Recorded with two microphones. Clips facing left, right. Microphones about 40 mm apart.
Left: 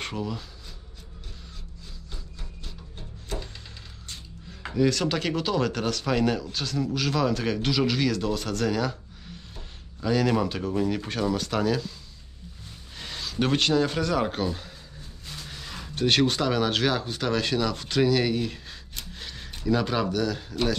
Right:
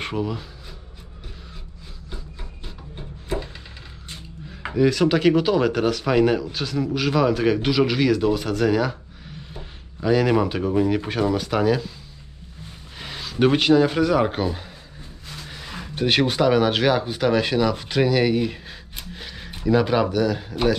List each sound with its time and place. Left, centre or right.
0.0 s speech: centre
2.0 s wood: centre
4.1 s speech: centre
12.9 s speech: centre